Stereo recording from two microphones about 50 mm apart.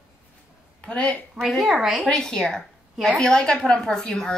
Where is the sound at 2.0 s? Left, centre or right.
Centre.